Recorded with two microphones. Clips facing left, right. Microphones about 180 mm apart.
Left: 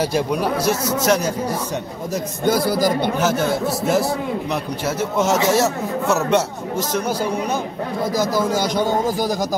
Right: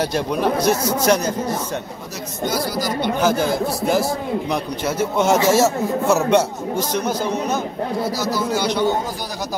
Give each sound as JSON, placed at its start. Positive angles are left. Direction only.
{"t": 0.0, "sound": "a man's voice", "side_deg": 5}
{"t": 2.4, "sound": "a man's voice", "side_deg": 55}
{"t": 3.2, "sound": "a man's voice", "side_deg": 5}
{"t": 8.2, "sound": "a man's voice", "side_deg": 50}